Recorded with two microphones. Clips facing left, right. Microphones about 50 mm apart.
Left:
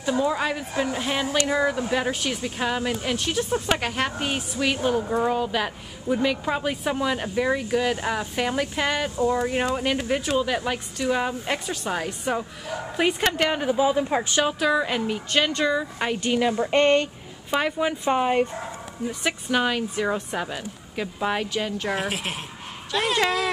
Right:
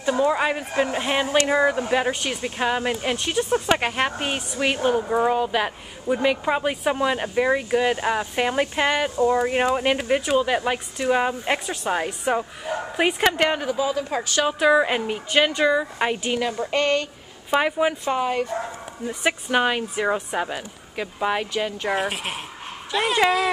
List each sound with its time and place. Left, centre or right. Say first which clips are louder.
0.2 s speech: right 3 dB; right
13.7 s a woman's voice: left 3 dB; centre
14.6 s speech: right 4 dB; centre
16.3 s speech: left 3 dB; centre
16.7 s a woman's voice: left 3 dB; left
17.5 s speech: right 3 dB; centre
18.0 s speech: left 2 dB; centre
19.0 s speech: right 3 dB; centre